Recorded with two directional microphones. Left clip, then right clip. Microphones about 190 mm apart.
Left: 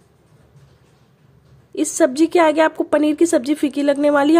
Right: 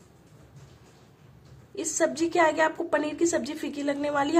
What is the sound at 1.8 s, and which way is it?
A woman's voice, 45° left (ahead or behind).